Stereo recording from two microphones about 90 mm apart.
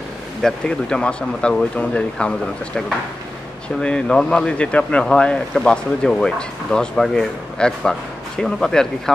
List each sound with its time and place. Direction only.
0.4 s speech: 5° left (ahead or behind)